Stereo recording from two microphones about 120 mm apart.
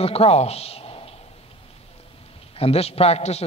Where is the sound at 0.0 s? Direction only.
55° left (ahead or behind).